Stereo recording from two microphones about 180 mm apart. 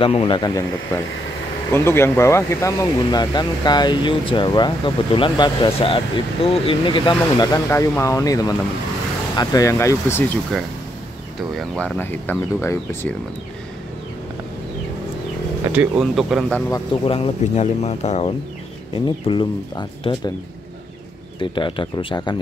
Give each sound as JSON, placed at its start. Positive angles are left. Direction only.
{"t": 0.0, "sound": "speech", "side_deg": 30}
{"t": 10.5, "sound": "speech", "side_deg": 0}
{"t": 15.7, "sound": "speech", "side_deg": -5}
{"t": 17.0, "sound": "speech", "side_deg": 30}
{"t": 19.0, "sound": "speech", "side_deg": 25}
{"t": 21.4, "sound": "speech", "side_deg": 25}